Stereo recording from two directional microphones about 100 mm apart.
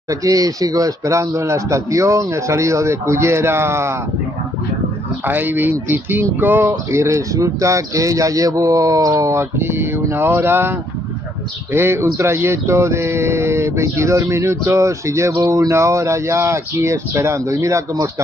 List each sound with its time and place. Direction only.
0.1 s speech: 35° right (ahead or behind)
5.2 s speech: 20° right (ahead or behind)
11.7 s speech: 25° right (ahead or behind)